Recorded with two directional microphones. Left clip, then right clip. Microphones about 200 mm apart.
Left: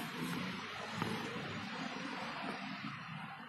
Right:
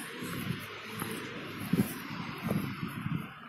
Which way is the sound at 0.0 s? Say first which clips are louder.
Right 2 dB; 50° left (ahead or behind).